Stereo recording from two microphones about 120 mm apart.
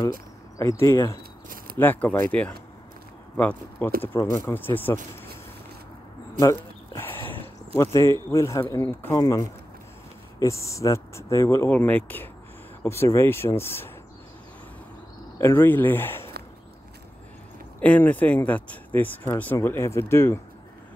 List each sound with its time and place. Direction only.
0.6 s speech: 25° left (ahead or behind)
7.2 s speech: 25° left (ahead or behind)
15.3 s speech: 20° left (ahead or behind)
17.7 s speech: 15° left (ahead or behind)